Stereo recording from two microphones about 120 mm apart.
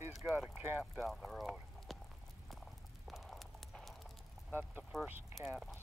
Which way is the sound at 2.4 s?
Centre (ahead or behind).